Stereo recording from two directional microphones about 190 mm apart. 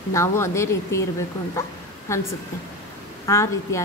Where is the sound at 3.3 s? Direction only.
15° left (ahead or behind).